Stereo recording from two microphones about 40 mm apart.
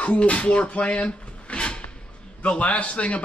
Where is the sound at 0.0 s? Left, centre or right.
Left.